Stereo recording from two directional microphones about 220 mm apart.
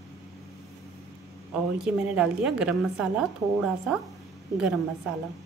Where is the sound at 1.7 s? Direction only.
5° right (ahead or behind).